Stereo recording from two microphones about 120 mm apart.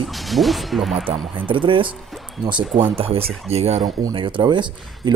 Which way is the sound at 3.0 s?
55° right (ahead or behind).